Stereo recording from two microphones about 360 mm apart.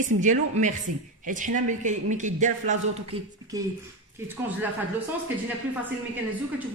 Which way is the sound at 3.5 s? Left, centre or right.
Centre.